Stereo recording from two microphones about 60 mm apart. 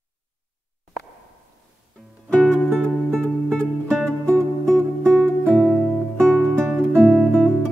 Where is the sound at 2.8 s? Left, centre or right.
Centre.